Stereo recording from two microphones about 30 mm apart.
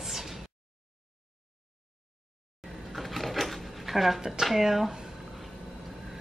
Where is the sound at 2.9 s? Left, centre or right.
Centre.